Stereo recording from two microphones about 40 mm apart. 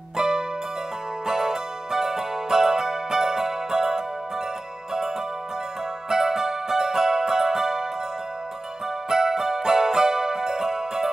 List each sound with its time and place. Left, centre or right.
0.2 s music: centre
6.0 s music: centre
9.1 s music: centre